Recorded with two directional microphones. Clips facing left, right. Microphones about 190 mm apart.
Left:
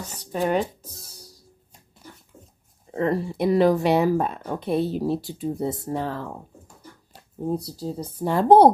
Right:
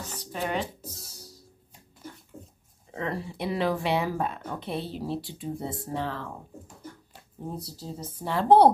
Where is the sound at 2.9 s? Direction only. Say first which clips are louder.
Left 9 dB; 45° left (ahead or behind).